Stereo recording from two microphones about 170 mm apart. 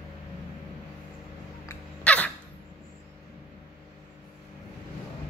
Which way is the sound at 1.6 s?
10° left (ahead or behind).